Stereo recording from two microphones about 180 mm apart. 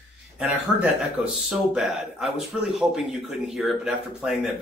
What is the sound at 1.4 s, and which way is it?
Speech, centre (ahead or behind).